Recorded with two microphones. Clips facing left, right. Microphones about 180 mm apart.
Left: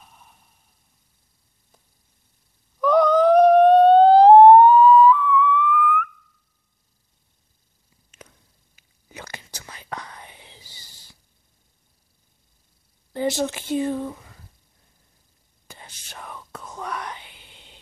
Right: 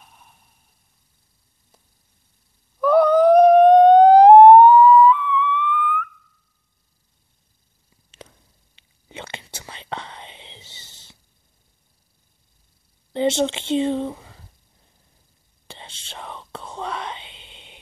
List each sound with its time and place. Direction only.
2.8 s a sound: 10° right (ahead or behind); by 6.0 s 25° right (ahead or behind)
9.1 s whispering: 25° right (ahead or behind)
13.1 s speech: 25° right (ahead or behind)
15.6 s whispering: 25° right (ahead or behind)